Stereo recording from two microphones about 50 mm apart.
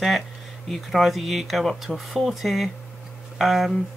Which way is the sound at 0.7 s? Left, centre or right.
Centre.